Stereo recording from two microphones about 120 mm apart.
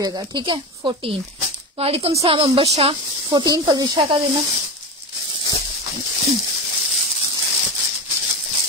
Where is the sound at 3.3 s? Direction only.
35° right (ahead or behind).